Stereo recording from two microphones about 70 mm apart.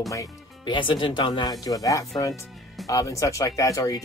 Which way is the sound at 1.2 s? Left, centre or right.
Left.